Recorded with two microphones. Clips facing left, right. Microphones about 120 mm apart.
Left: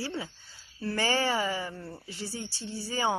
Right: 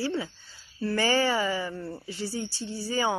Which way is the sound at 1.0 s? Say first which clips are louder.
Right 3 dB; 35° left (ahead or behind).